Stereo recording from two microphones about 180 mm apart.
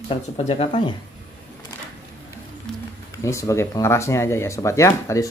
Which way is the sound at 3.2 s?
15° left (ahead or behind).